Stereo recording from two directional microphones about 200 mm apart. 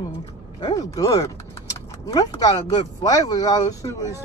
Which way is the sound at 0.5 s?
20° left (ahead or behind).